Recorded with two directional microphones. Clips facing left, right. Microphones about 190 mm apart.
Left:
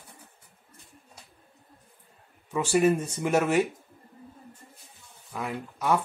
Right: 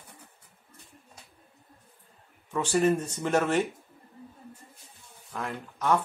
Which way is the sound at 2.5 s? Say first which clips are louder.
Left 2 dB; 10° left (ahead or behind).